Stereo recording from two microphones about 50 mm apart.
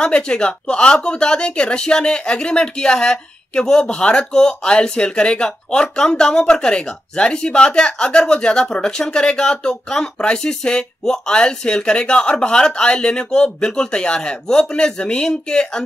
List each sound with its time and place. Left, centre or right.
0.0 s speech: centre